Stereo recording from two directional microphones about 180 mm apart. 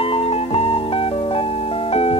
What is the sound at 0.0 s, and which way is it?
Music, 35° left (ahead or behind).